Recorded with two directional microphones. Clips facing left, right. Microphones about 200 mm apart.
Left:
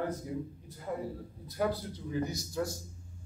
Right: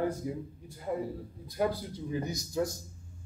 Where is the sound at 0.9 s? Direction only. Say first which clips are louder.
Right 4 dB; 25° right (ahead or behind).